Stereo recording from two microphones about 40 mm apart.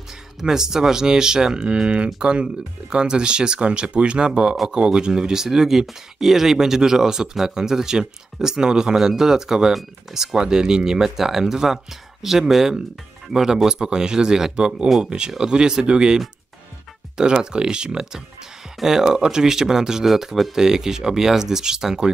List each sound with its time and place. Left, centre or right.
0.4 s speech: centre
17.2 s speech: centre
18.8 s speech: centre